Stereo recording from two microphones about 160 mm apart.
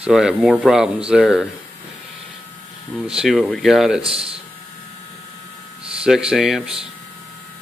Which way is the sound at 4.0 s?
35° right (ahead or behind).